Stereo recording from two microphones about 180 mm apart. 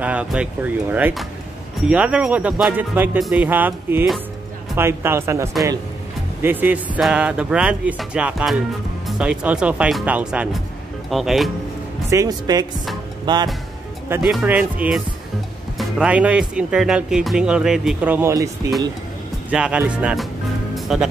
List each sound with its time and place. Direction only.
0.0 s speech: 5° right (ahead or behind)
12.1 s speech: 20° right (ahead or behind)
14.0 s speech: 10° right (ahead or behind)
19.5 s speech: 5° right (ahead or behind)
20.7 s music: 5° right (ahead or behind)